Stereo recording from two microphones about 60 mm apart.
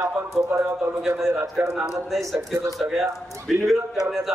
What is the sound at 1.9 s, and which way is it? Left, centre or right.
Speech, centre.